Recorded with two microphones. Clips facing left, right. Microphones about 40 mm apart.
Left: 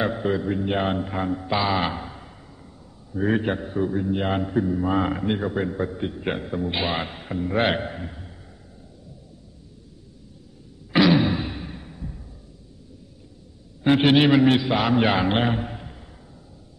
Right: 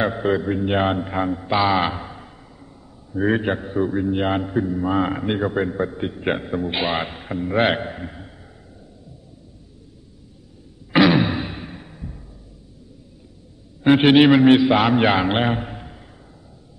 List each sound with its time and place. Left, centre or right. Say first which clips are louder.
0.0 s a man's voice: right 3 dB; centre
4.4 s a man's voice: right 1 dB; centre
5.2 s a man's voice: right 3 dB; right
10.9 s a sound: right 2 dB; centre
13.8 s a man's voice: right 4 dB; right